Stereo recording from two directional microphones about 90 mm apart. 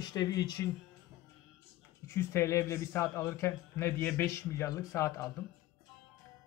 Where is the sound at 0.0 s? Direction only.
45° left (ahead or behind).